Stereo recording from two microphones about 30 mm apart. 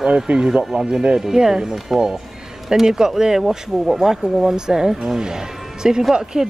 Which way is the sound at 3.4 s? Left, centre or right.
Centre.